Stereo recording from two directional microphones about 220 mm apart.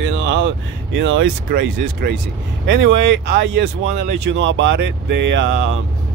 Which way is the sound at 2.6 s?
55° right (ahead or behind).